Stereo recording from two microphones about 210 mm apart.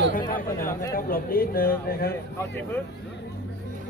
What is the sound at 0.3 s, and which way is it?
A man's voice, 40° left (ahead or behind).